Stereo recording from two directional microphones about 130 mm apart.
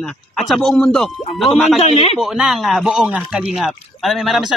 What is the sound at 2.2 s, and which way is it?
Speech, centre (ahead or behind).